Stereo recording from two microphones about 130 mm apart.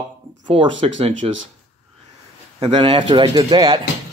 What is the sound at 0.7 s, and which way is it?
Speech, 50° right (ahead or behind).